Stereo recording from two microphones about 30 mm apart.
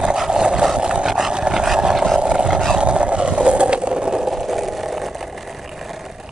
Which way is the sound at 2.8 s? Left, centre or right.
Right.